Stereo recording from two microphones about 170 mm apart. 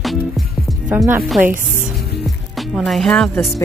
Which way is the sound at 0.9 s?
10° right (ahead or behind).